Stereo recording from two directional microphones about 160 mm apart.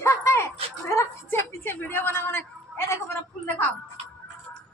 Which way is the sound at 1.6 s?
15° left (ahead or behind).